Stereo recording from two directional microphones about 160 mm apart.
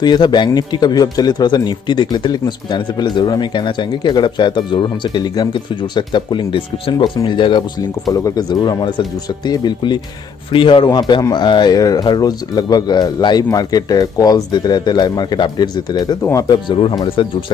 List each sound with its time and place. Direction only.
0.0 s a man's voice: 30° left (ahead or behind)